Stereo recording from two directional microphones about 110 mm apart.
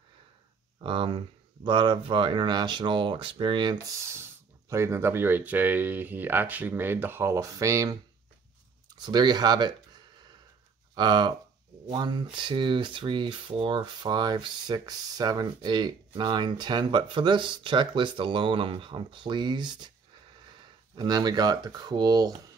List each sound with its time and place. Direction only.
0.8 s speech: 50° right (ahead or behind)
3.8 s speech: 25° right (ahead or behind)
9.0 s speech: 40° right (ahead or behind)
20.9 s speech: 40° right (ahead or behind)